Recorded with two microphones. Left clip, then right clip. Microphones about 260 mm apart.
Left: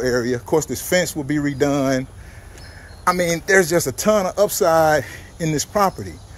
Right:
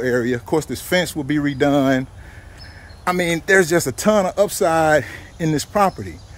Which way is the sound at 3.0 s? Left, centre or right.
Centre.